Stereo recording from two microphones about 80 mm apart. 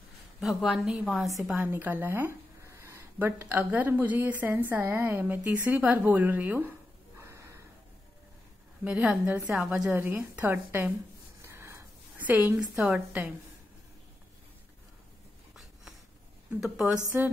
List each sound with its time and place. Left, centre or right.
0.4 s a woman's voice: centre
1.5 s a woman's voice: right
2.6 s a sound: right
3.2 s a woman's voice: right
7.2 s snort: right
8.8 s a woman's voice: centre
11.4 s wheeze: right
12.2 s a woman's voice: right
16.6 s speech: centre